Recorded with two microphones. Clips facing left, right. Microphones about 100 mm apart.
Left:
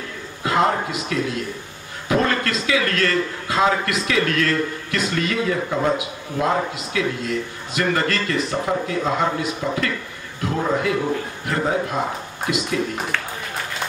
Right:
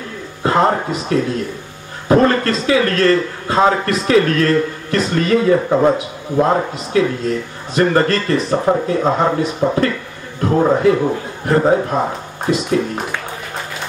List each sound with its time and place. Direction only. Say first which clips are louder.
0.4 s a man's voice: right 5 dB; 35° right (ahead or behind)